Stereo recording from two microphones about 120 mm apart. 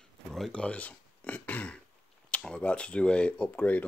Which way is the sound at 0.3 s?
5° left (ahead or behind).